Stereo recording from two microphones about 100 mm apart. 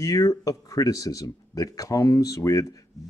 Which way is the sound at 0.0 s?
35° left (ahead or behind).